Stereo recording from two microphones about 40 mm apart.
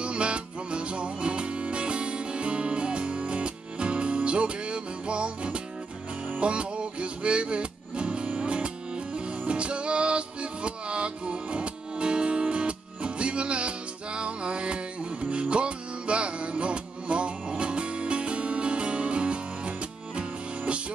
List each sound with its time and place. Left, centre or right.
0.0 s music: right